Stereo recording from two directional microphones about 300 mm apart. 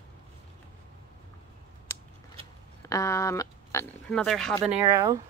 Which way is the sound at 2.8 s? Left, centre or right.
Centre.